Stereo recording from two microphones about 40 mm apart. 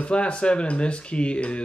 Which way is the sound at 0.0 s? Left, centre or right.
Left.